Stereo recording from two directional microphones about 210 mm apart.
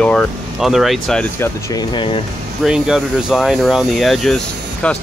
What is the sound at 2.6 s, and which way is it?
Speech, centre (ahead or behind).